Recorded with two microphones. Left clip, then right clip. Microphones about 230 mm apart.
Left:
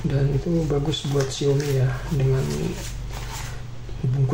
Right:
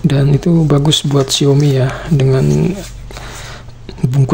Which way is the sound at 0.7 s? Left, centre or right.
Right.